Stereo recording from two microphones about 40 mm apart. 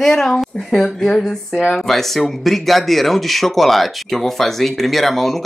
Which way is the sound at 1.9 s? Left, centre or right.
Centre.